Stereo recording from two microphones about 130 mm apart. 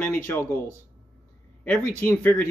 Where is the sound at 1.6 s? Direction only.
15° left (ahead or behind).